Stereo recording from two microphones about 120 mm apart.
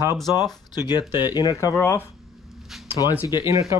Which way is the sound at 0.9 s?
35° left (ahead or behind).